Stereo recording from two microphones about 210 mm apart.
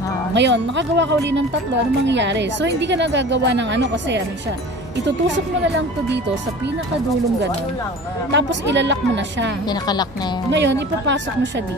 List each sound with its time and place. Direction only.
0.3 s a woman's voice: 55° right (ahead or behind)
8.3 s a woman's voice: 55° right (ahead or behind)
9.7 s a woman's voice: 20° left (ahead or behind)
10.5 s a woman's voice: 55° right (ahead or behind)